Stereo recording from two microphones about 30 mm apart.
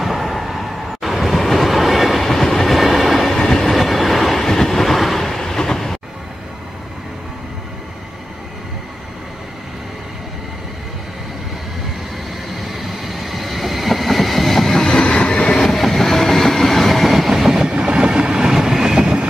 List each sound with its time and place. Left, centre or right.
0.0 s train: centre
13.1 s train: centre
14.9 s train: left
15.7 s train: centre
17.3 s train: centre